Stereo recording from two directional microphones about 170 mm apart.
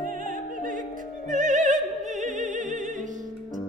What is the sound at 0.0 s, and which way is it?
Music, 50° right (ahead or behind).